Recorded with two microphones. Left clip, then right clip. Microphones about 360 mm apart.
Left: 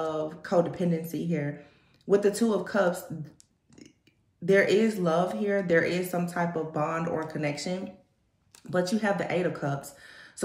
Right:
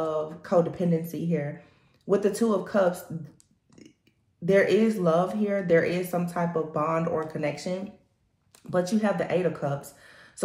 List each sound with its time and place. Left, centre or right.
0.0 s speech: centre